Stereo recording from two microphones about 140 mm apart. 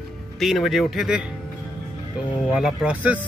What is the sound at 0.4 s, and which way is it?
Speech, centre (ahead or behind).